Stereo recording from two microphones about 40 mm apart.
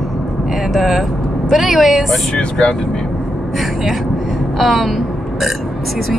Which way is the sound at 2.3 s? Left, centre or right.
Centre.